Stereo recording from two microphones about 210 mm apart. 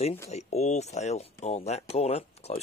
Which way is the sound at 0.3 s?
30° left (ahead or behind).